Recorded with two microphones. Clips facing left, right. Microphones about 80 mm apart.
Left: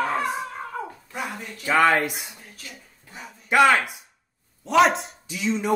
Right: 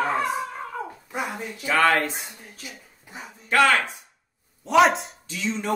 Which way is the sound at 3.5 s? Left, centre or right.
Centre.